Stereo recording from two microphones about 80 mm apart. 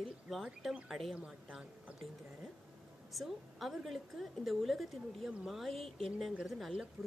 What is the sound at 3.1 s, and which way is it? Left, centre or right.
A woman's voice, centre.